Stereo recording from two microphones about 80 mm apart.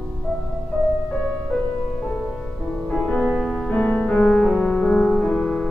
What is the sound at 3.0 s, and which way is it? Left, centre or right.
Music, centre.